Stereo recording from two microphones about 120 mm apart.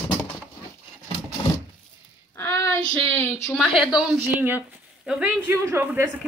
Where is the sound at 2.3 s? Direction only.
25° left (ahead or behind).